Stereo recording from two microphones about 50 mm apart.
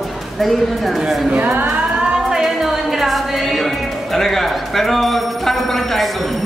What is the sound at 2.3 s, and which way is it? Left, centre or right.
Music, centre.